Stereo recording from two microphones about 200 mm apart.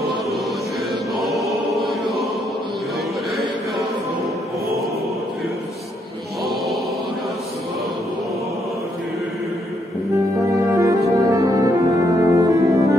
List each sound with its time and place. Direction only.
1.1 s choir: centre (ahead or behind)
10.8 s brass instrument: 15° right (ahead or behind)